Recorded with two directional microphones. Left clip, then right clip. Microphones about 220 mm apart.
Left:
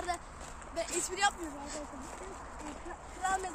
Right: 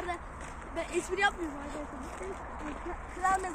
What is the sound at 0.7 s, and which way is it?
Speech, 55° left (ahead or behind).